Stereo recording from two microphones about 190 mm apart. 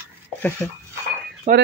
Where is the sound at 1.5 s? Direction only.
35° right (ahead or behind).